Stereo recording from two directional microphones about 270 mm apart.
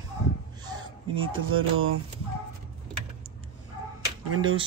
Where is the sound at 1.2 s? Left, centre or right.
Right.